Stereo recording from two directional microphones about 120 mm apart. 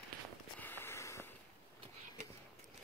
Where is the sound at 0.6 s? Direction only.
20° left (ahead or behind).